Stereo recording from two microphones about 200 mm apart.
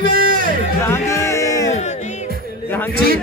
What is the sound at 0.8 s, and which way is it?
Music, 15° left (ahead or behind).